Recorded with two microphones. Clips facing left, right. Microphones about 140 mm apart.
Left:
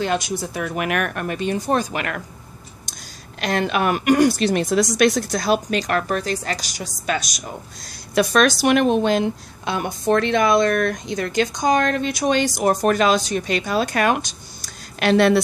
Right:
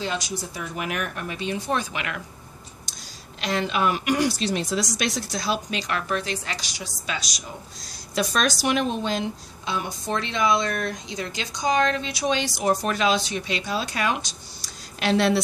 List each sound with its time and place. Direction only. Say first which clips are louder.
0.0 s a woman's voice: left 7 dB; 55° left (ahead or behind)
8.1 s a woman's voice: left 7 dB; 60° left (ahead or behind)